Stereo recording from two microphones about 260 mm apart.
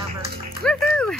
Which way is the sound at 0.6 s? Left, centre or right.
Centre.